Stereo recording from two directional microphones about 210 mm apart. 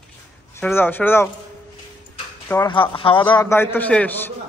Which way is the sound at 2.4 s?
15° left (ahead or behind).